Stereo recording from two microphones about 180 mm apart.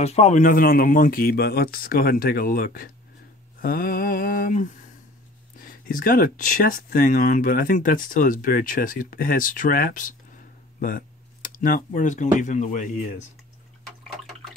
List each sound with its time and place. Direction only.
0.0 s speech: 40° left (ahead or behind)